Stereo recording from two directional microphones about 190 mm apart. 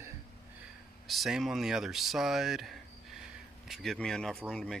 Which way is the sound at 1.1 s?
Centre (ahead or behind).